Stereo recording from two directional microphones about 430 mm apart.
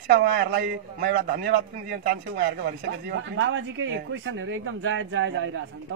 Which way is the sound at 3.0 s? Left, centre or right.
Right.